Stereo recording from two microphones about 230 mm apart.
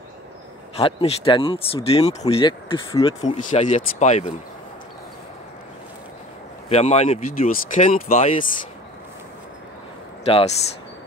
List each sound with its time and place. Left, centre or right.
0.7 s speech: left
3.2 s speech: left
6.7 s speech: left
10.2 s speech: left